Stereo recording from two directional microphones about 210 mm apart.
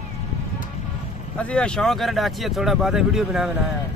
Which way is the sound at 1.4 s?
5° left (ahead or behind).